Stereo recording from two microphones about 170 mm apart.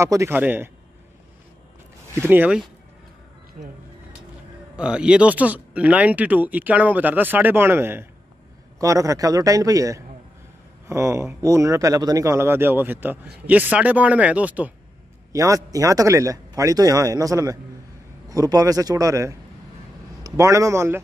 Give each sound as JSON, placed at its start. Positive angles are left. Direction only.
{"t": 0.0, "sound": "speech", "side_deg": -15}
{"t": 2.2, "sound": "speech", "side_deg": -10}
{"t": 3.6, "sound": "speech", "side_deg": -50}
{"t": 4.7, "sound": "a man's voice", "side_deg": -5}
{"t": 15.3, "sound": "a man's voice", "side_deg": -20}